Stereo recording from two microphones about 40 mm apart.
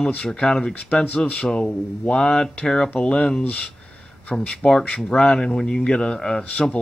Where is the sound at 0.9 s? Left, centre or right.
Left.